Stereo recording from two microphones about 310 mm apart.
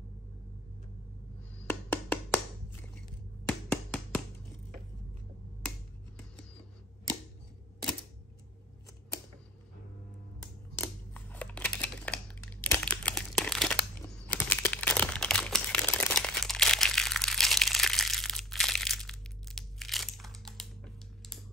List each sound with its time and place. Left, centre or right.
1.7 s music: centre
3.4 s finger snapping: centre
10.8 s scissors: centre
14.3 s crumpling: centre